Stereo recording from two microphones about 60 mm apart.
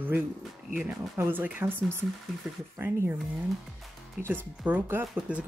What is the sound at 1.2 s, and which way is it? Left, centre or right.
Speech, right.